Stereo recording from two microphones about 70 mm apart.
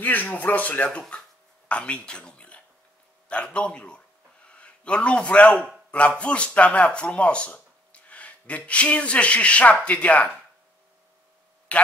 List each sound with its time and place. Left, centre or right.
0.0 s a man's voice: left
11.7 s speech: centre